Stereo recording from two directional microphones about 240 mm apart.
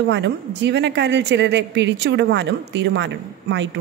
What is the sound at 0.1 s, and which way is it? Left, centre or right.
A woman's voice, right.